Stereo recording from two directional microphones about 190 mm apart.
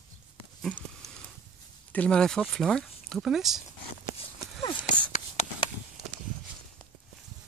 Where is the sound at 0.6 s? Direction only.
5° left (ahead or behind).